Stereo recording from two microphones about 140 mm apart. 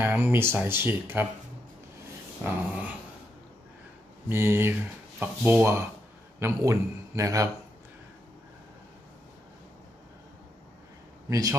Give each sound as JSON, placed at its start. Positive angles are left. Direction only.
{"t": 0.0, "sound": "speech", "side_deg": -15}
{"t": 2.4, "sound": "speech", "side_deg": -10}
{"t": 4.3, "sound": "a man's voice", "side_deg": -15}
{"t": 11.2, "sound": "a man's voice", "side_deg": -25}